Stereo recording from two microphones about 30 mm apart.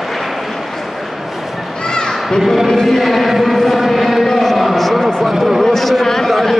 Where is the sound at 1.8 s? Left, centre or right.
Left.